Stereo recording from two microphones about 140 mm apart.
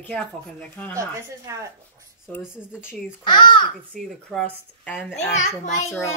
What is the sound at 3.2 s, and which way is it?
Speech, 35° left (ahead or behind).